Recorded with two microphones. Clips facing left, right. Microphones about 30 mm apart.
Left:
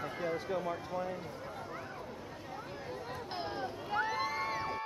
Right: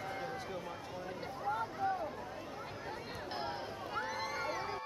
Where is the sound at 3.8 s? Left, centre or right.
Centre.